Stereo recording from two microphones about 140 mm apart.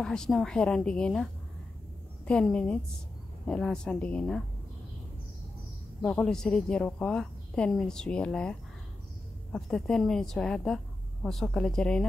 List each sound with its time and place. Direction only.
0.0 s a woman's voice: 5° left (ahead or behind)
6.0 s a woman's voice: 5° left (ahead or behind)